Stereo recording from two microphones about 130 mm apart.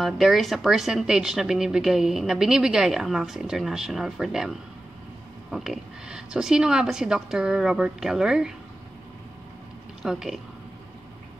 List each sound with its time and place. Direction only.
0.0 s speech: centre (ahead or behind)
10.0 s speech: 5° right (ahead or behind)